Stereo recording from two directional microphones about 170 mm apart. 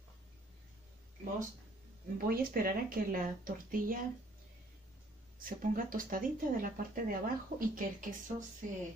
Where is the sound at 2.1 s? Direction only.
60° right (ahead or behind).